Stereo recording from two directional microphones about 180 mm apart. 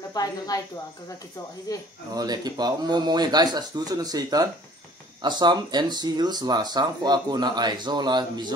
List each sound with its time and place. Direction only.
0.1 s speech: 20° left (ahead or behind)
1.7 s speech: 20° left (ahead or behind)
2.1 s speech: 20° right (ahead or behind)